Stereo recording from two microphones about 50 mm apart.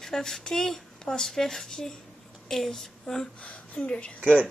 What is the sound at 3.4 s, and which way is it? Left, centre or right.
A woman's voice, left.